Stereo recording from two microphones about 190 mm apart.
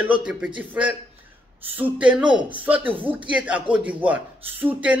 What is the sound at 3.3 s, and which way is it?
A man's voice, 5° right (ahead or behind).